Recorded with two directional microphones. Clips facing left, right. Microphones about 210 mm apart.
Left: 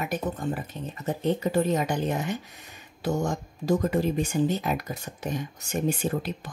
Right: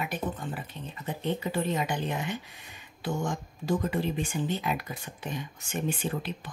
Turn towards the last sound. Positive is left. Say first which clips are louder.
# left 4 dB
turn(degrees=45)  # may be behind; listen again after turning